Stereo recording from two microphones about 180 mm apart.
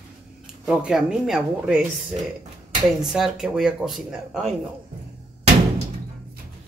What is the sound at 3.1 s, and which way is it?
Speech, 5° right (ahead or behind).